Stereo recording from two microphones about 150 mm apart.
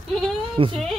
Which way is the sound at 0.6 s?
40° right (ahead or behind).